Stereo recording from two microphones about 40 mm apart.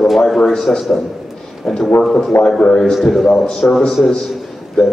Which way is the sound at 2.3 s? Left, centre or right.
Left.